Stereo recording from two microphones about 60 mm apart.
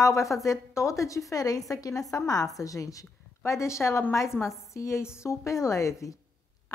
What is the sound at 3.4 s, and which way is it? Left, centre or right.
Speech, left.